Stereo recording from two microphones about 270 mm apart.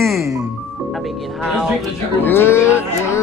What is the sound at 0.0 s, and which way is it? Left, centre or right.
Music, centre.